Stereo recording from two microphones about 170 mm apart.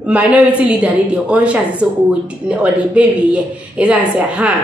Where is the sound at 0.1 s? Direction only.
10° right (ahead or behind).